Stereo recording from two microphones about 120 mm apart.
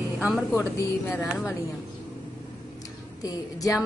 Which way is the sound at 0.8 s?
20° left (ahead or behind).